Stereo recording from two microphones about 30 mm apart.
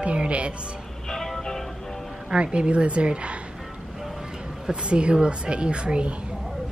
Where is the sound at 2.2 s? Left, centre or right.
Right.